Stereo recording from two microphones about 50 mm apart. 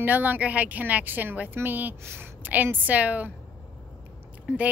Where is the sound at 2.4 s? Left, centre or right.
Right.